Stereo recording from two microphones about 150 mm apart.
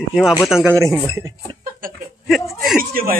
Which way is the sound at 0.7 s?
20° right (ahead or behind).